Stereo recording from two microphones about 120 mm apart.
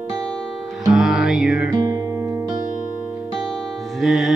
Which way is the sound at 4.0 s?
Centre (ahead or behind).